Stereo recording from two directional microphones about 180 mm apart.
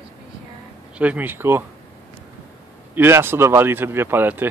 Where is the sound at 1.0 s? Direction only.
10° right (ahead or behind).